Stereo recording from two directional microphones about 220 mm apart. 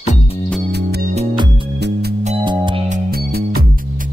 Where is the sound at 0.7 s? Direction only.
50° right (ahead or behind).